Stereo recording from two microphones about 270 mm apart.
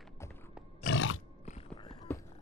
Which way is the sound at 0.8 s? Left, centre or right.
Left.